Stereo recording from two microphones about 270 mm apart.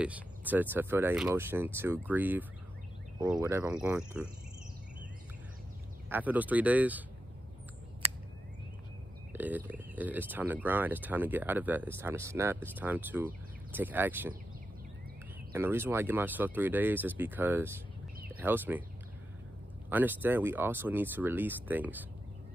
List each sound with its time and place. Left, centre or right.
0.0 s speech: centre
6.0 s speech: centre
9.3 s speech: centre
15.5 s speech: centre
19.9 s speech: centre